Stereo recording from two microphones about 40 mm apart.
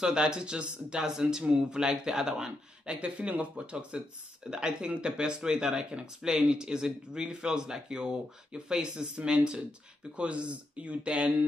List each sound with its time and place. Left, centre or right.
0.0 s speech: right
3.0 s speech: right